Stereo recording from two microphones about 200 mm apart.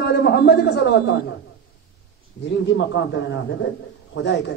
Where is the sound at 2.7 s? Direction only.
65° left (ahead or behind).